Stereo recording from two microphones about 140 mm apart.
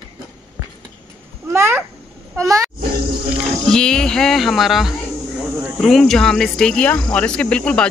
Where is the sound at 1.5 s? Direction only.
20° right (ahead or behind).